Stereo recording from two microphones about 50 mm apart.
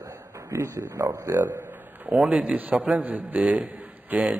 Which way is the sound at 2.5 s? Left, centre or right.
Right.